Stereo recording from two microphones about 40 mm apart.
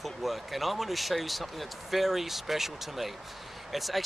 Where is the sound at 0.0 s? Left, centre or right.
Centre.